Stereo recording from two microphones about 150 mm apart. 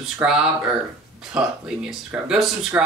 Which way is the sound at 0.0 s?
5° right (ahead or behind).